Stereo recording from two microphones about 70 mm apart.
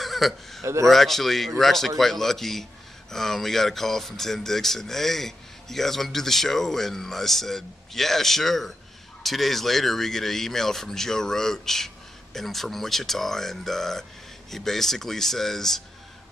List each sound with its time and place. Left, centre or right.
0.0 s a man's voice: centre
0.6 s speech: right
0.8 s speech: centre